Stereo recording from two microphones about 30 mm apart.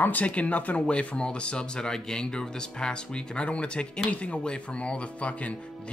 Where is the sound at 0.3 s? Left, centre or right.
Left.